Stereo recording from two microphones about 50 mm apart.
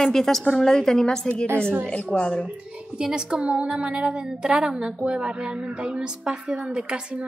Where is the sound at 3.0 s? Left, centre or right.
Centre.